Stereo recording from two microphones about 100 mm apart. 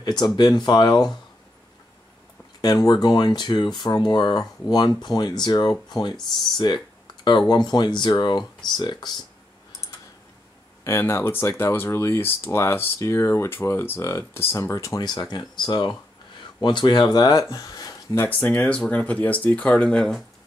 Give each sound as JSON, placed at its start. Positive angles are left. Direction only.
{"t": 0.2, "sound": "speech", "side_deg": 45}
{"t": 2.6, "sound": "speech", "side_deg": 40}
{"t": 10.8, "sound": "speech", "side_deg": 25}
{"t": 18.4, "sound": "speech", "side_deg": 15}